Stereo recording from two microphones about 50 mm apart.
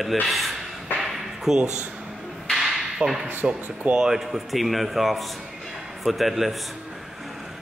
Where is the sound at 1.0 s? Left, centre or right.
Centre.